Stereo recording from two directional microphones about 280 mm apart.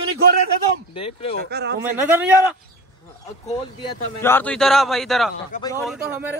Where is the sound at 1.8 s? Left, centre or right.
Centre.